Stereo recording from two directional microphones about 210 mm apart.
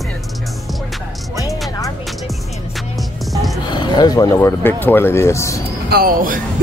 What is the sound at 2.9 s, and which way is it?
Music, centre (ahead or behind).